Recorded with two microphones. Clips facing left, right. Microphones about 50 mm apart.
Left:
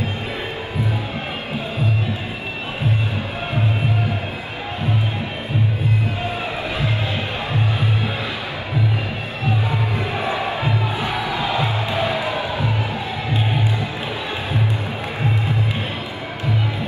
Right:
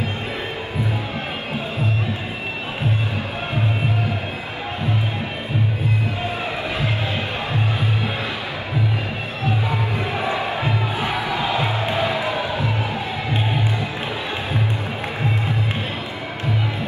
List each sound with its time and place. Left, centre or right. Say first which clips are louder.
10.5 s music: even; right